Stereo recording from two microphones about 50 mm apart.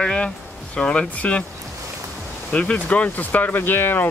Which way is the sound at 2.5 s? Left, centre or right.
Left.